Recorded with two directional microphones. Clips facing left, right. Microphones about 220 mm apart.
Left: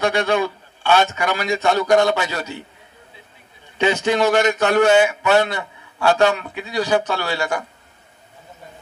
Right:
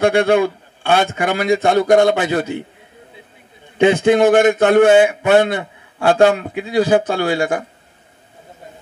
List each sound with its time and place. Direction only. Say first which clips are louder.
0.0 s speech: right 6 dB; 50° right (ahead or behind)
3.7 s speech: right 6 dB; 50° right (ahead or behind)